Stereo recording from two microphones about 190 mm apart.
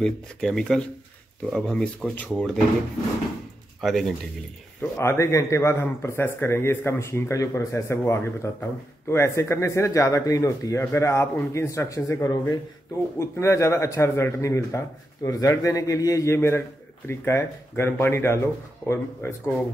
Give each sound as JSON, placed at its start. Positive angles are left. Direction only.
{"t": 0.0, "sound": "speech", "side_deg": 5}
{"t": 3.8, "sound": "speech", "side_deg": 0}
{"t": 4.9, "sound": "speech", "side_deg": 15}